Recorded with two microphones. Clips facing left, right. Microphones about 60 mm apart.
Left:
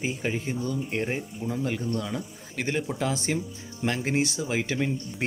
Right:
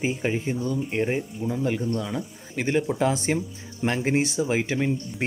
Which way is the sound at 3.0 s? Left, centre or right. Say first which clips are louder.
Right 4 dB; right.